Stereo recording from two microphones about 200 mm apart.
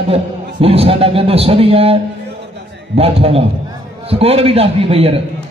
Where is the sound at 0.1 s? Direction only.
30° right (ahead or behind).